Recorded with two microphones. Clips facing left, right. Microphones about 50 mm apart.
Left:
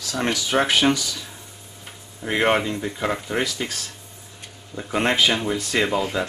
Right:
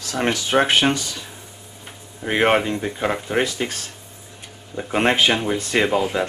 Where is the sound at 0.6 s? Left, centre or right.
Right.